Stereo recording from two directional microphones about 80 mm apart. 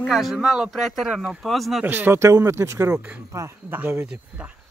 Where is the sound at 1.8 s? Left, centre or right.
Right.